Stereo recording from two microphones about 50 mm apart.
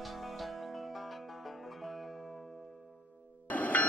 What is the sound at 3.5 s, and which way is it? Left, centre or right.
Music, left.